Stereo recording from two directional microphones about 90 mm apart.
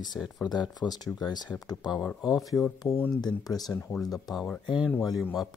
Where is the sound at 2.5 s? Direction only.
10° left (ahead or behind).